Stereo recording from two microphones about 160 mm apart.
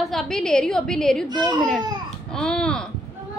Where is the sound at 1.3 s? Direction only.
25° right (ahead or behind).